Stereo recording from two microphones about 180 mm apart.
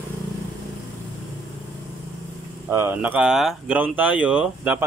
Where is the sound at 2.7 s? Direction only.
10° right (ahead or behind).